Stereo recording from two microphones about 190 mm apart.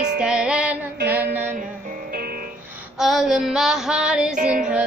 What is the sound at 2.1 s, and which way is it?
Music, 50° right (ahead or behind).